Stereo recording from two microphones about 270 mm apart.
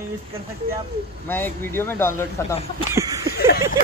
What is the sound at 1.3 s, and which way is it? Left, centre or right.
Speech, centre.